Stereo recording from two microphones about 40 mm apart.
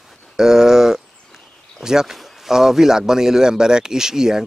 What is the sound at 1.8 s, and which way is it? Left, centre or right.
Speech, centre.